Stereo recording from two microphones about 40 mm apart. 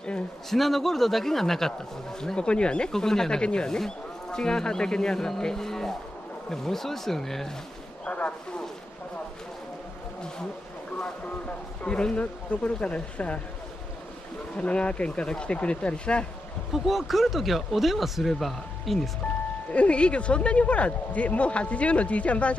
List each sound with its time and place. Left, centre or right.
0.5 s speech: centre; by 2.9 s left
2.9 s speech: centre
8.0 s a sound: left
11.4 s speech: left
12.0 s speech: left
14.6 s speech: left
16.7 s speech: centre
19.7 s speech: left